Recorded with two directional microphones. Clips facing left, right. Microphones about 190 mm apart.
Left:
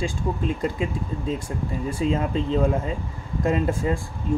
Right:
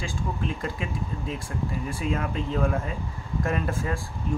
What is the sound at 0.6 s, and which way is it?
Speech, 25° left (ahead or behind).